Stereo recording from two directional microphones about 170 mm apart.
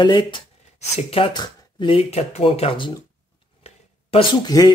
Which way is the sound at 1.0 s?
35° left (ahead or behind).